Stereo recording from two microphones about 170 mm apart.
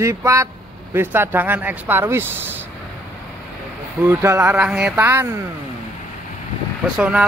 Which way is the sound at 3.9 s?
15° right (ahead or behind).